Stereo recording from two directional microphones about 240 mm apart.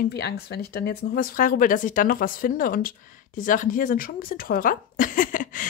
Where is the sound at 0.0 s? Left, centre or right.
Left.